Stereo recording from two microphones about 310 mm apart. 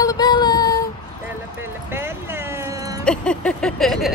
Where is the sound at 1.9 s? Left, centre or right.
Centre.